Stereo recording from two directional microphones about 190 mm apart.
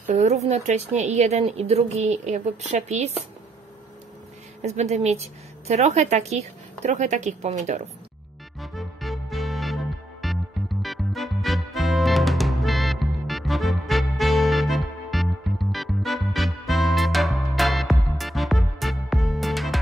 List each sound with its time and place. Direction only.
0.1 s a woman's voice: 35° right (ahead or behind)
4.6 s a woman's voice: 35° right (ahead or behind)
8.5 s music: centre (ahead or behind)